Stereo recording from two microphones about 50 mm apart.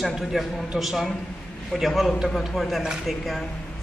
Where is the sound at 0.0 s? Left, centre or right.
Centre.